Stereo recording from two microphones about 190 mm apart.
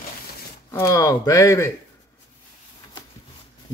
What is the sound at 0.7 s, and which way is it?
Speech, 15° left (ahead or behind).